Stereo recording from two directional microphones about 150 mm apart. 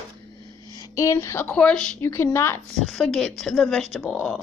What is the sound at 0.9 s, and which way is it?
Speech, 20° left (ahead or behind).